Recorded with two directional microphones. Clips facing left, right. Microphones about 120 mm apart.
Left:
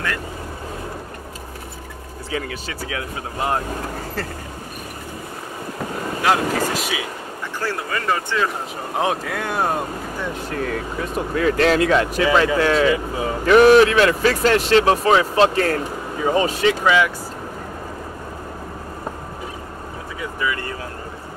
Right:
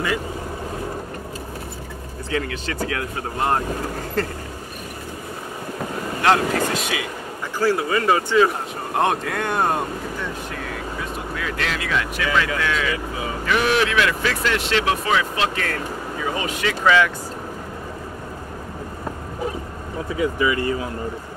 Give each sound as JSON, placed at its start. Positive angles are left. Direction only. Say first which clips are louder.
{"t": 2.3, "sound": "speech", "louder": "right 2 dB", "side_deg": 5}
{"t": 6.2, "sound": "speech", "louder": "right 1 dB", "side_deg": 5}
{"t": 7.6, "sound": "speech", "louder": "right 5 dB", "side_deg": -10}
{"t": 8.9, "sound": "speech", "louder": "right 1 dB", "side_deg": 0}
{"t": 11.3, "sound": "speech", "louder": "left 12 dB", "side_deg": 40}
{"t": 16.8, "sound": "speech", "louder": "right 3 dB", "side_deg": 15}
{"t": 20.2, "sound": "speech", "louder": "right 5 dB", "side_deg": -20}